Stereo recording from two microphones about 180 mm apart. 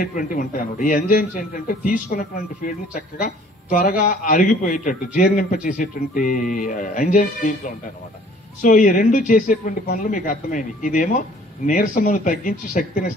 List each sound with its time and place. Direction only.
0.0 s a man's voice: 50° left (ahead or behind)
8.6 s a man's voice: 50° left (ahead or behind)